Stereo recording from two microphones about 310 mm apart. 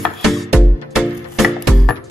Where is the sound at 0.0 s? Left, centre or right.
Centre.